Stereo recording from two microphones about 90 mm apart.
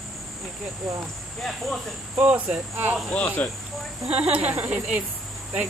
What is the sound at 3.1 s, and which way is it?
Speech, 15° left (ahead or behind).